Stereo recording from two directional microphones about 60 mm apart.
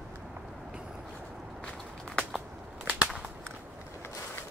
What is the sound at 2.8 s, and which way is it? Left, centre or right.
Cap gun, right.